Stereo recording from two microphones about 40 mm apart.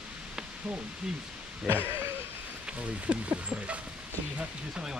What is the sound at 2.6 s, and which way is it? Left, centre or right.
Speech, right.